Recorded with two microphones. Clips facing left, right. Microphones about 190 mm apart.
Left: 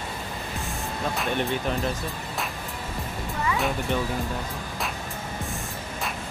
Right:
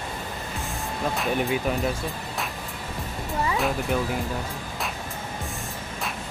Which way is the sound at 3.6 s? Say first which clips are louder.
Right 1 dB; centre (ahead or behind).